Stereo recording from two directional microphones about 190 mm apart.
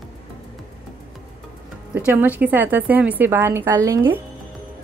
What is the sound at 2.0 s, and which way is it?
A woman's voice, 10° right (ahead or behind).